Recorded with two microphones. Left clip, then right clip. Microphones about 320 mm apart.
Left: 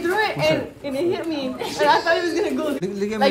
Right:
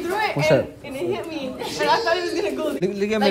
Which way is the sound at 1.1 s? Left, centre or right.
Left.